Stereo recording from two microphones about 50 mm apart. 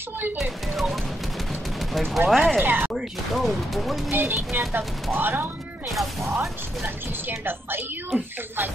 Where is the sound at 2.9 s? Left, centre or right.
Centre.